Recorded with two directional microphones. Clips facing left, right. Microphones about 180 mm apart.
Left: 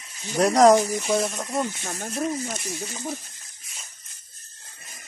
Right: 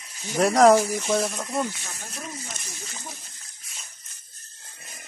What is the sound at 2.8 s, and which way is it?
Speech, 50° left (ahead or behind).